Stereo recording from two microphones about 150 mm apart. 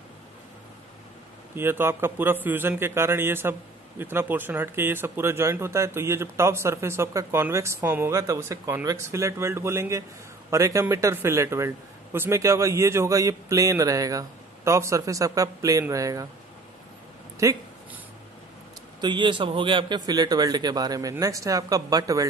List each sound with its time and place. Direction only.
1.5 s a man's voice: 15° right (ahead or behind)
17.4 s a man's voice: 20° right (ahead or behind)
18.9 s a man's voice: 30° right (ahead or behind)